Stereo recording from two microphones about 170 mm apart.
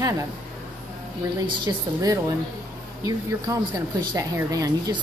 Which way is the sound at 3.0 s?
20° right (ahead or behind).